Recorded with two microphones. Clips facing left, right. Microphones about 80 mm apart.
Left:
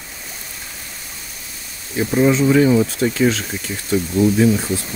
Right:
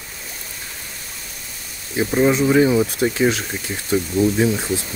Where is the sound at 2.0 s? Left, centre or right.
Centre.